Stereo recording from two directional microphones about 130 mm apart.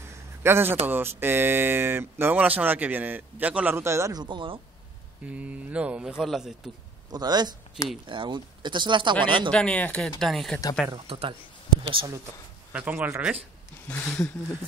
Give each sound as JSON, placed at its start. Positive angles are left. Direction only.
{"t": 0.4, "sound": "a man's voice", "side_deg": -15}
{"t": 5.2, "sound": "speech", "side_deg": -10}
{"t": 7.1, "sound": "speech", "side_deg": -30}
{"t": 9.5, "sound": "speech", "side_deg": 10}
{"t": 11.1, "sound": "speech", "side_deg": -45}
{"t": 12.7, "sound": "speech", "side_deg": -10}
{"t": 13.8, "sound": "speech", "side_deg": 10}